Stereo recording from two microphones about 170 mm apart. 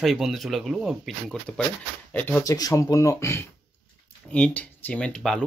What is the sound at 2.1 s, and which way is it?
Speech, 10° left (ahead or behind).